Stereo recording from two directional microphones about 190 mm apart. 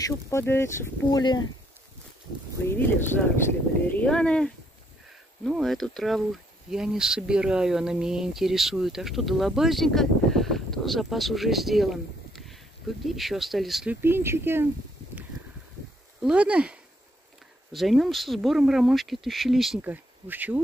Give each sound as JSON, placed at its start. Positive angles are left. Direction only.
{"t": 0.0, "sound": "speech", "side_deg": 15}
{"t": 2.7, "sound": "speech", "side_deg": 10}
{"t": 14.0, "sound": "speech", "side_deg": -10}
{"t": 16.2, "sound": "speech", "side_deg": -5}
{"t": 17.7, "sound": "speech", "side_deg": 0}